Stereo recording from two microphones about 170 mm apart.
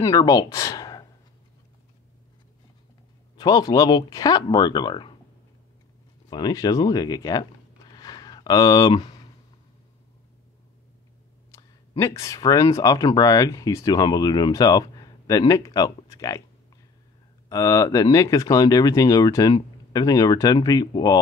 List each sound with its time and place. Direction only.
0.0 s speech: 20° left (ahead or behind)
3.3 s speech: 25° left (ahead or behind)
6.3 s speech: 20° left (ahead or behind)
7.9 s a sound: 25° left (ahead or behind)
11.5 s a sound: 15° left (ahead or behind)
12.0 s speech: 20° left (ahead or behind)
17.5 s speech: 20° left (ahead or behind)